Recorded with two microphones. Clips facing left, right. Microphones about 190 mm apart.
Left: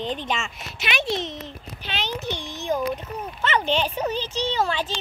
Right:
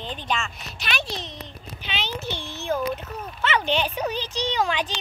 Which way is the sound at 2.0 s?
15° left (ahead or behind).